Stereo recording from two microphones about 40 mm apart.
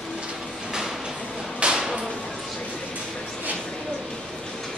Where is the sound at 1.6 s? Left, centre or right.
Centre.